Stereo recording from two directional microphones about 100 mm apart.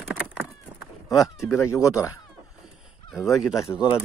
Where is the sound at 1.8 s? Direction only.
30° left (ahead or behind).